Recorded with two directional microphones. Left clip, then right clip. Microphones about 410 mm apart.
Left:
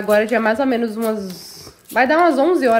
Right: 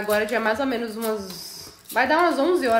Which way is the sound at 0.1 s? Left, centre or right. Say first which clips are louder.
Left 7 dB; centre.